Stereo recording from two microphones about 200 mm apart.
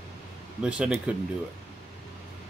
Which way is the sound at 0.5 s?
5° right (ahead or behind).